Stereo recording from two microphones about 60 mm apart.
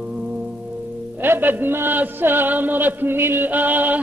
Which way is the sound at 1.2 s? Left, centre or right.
Right.